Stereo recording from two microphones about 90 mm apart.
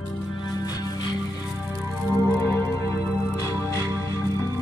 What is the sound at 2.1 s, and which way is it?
Music, 40° left (ahead or behind).